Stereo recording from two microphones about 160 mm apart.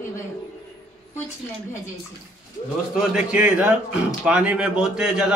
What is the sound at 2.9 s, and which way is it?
A man's voice, 5° right (ahead or behind).